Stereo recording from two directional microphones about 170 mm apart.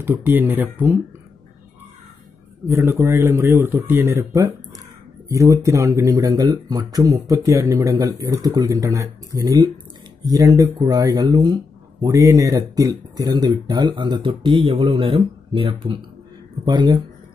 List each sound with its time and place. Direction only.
0.0 s speech: 10° right (ahead or behind)
2.7 s speech: 15° right (ahead or behind)